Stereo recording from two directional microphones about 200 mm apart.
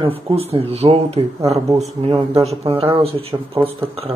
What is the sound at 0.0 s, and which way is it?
Speech, 30° right (ahead or behind).